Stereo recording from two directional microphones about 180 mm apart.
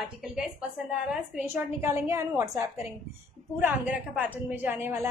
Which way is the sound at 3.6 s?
5° right (ahead or behind).